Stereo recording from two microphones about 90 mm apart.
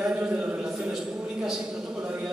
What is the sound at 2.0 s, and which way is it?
Speech, 15° right (ahead or behind).